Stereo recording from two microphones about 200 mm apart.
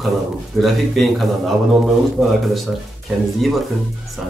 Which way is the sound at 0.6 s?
Centre (ahead or behind).